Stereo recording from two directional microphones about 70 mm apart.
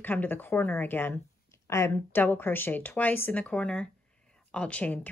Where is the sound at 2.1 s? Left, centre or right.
Left.